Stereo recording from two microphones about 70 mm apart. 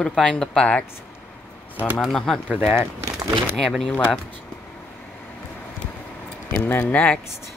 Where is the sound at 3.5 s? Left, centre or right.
Centre.